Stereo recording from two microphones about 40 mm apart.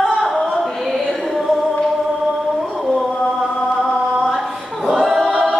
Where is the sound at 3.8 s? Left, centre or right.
Centre.